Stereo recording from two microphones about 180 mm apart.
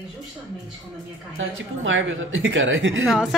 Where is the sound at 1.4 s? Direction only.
90° right.